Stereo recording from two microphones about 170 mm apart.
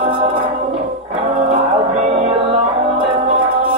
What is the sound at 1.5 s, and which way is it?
Music, 35° right (ahead or behind).